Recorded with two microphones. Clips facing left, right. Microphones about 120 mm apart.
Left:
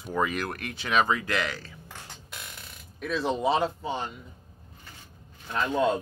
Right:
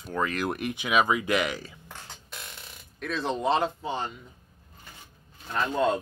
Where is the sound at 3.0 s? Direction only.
5° left (ahead or behind).